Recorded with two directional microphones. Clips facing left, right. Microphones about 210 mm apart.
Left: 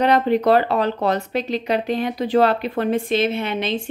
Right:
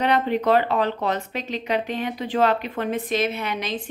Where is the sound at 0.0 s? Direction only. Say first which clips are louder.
Left 4 dB; 35° left (ahead or behind).